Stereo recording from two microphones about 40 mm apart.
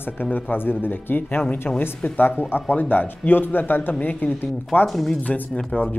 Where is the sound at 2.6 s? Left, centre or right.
Left.